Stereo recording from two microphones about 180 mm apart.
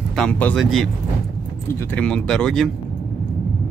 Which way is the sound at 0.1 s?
5° left (ahead or behind).